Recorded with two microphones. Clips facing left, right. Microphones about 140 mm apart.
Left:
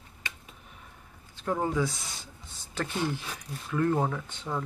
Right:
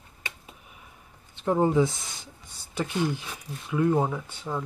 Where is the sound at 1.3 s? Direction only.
25° right (ahead or behind).